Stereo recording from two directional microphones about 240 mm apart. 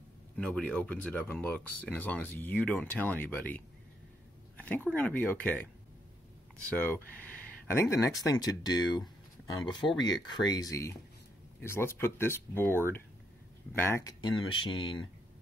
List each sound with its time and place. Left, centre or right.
0.4 s speech: centre
4.6 s a sound: centre
4.9 s speech: centre
6.7 s speech: centre